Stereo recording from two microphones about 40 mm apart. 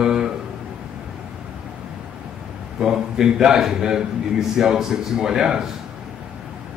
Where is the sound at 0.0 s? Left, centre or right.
Centre.